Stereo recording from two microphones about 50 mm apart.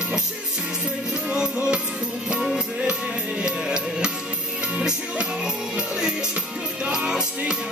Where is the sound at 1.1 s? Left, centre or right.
Centre.